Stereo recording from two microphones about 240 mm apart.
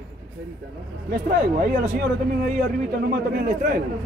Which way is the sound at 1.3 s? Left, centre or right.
Right.